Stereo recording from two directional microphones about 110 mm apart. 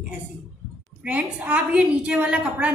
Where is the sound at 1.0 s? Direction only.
10° right (ahead or behind).